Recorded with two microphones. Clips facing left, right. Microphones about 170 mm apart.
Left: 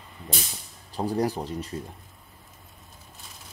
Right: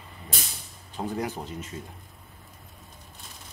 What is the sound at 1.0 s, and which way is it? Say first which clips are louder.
Speech: left 5 dB; 35° left (ahead or behind).